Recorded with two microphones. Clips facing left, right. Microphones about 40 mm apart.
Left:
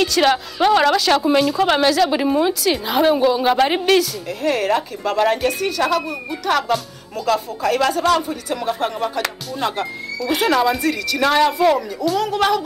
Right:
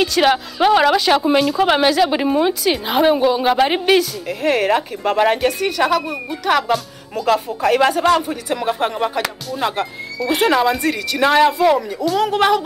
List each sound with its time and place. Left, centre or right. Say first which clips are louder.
0.0 s a woman's voice: right 1 dB; centre; by 9.2 s right
9.2 s a woman's voice: right 1 dB; centre
10.9 s a woman's voice: right 2 dB; right
11.6 s speech: right 1 dB; centre
12.2 s speech: right 4 dB; centre